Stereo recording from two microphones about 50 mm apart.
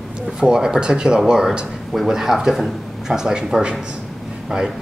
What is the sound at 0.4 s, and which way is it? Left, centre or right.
A man's voice, centre.